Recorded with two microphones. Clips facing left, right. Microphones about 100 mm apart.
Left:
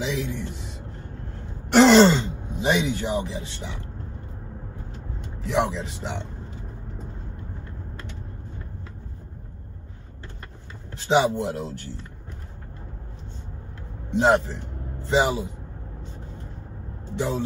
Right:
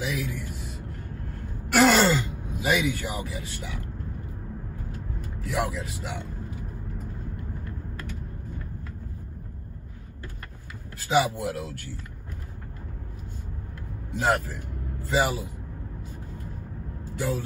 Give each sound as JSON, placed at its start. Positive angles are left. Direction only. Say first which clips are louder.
{"t": 0.0, "sound": "a sound", "louder": "left 3 dB", "side_deg": 25}
{"t": 1.7, "sound": "throat clearing", "louder": "left 5 dB", "side_deg": 25}
{"t": 4.9, "sound": "vehicle", "louder": "right 1 dB", "side_deg": 25}
{"t": 7.6, "sound": "a sound", "louder": "right 2 dB", "side_deg": 25}
{"t": 11.0, "sound": "speech", "louder": "left 3 dB", "side_deg": 25}
{"t": 14.1, "sound": "speech", "louder": "left 6 dB", "side_deg": 25}
{"t": 17.1, "sound": "speech", "louder": "left 3 dB", "side_deg": 25}